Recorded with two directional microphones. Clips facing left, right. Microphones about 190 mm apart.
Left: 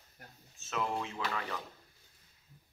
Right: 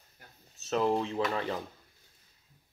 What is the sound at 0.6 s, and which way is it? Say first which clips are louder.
Speech: right 8 dB; 35° right (ahead or behind).